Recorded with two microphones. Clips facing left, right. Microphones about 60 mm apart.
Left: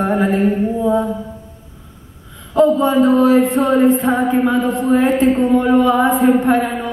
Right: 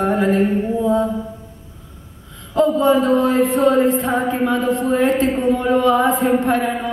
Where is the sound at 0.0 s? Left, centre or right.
Centre.